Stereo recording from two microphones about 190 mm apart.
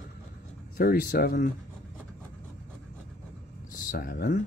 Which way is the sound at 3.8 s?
45° left (ahead or behind).